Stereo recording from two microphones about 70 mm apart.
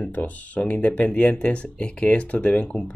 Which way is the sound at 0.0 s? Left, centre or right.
Left.